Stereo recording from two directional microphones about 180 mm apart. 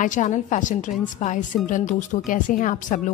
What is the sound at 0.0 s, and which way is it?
A woman's voice, 45° left (ahead or behind).